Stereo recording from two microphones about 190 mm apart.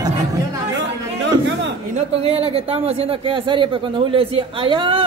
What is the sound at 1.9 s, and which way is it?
A man's voice, 30° right (ahead or behind).